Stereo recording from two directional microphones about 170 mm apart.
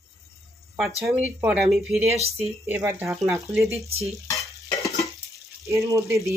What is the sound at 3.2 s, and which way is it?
Cutlery, centre (ahead or behind).